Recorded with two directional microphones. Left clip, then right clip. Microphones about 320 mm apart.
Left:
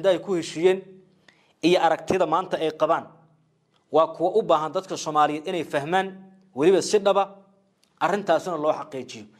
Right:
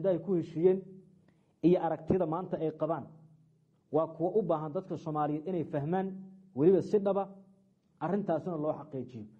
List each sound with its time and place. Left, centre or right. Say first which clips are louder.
0.0 s a man's voice: left 9 dB; centre
4.5 s a man's voice: left 11 dB; centre